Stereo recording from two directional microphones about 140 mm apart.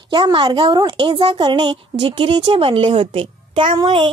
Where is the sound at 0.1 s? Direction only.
35° right (ahead or behind).